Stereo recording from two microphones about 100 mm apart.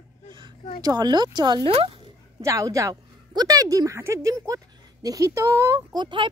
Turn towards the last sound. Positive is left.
turn(degrees=-50)  # may be behind; listen again after turning